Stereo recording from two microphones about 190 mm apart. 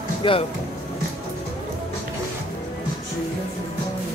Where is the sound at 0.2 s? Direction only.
30° left (ahead or behind).